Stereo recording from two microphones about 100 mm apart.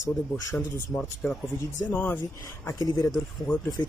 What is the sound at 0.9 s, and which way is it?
Speech, 15° left (ahead or behind).